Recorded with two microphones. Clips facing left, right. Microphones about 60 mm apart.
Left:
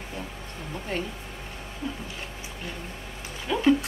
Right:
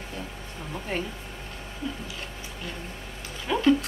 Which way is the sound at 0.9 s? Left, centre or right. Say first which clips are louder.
Even; centre.